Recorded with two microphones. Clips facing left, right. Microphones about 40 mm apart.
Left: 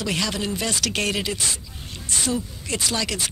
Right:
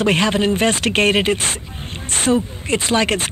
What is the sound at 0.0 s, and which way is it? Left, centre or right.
Speech, right.